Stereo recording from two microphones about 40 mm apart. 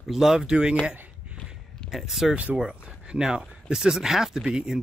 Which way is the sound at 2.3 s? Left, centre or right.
Right.